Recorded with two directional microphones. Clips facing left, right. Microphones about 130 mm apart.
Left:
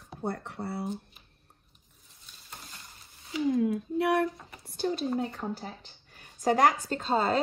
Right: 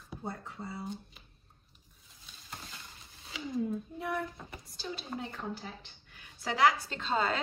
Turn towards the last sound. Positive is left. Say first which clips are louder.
# left 5 dB
turn(degrees=35)  # may be behind; listen again after turning